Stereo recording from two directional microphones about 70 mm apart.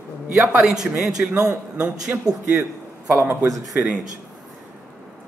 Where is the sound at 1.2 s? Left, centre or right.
Centre.